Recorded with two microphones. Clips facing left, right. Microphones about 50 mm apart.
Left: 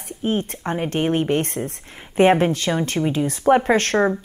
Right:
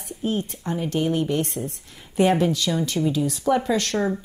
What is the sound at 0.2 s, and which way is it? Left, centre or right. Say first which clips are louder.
Speech: left 3 dB; left.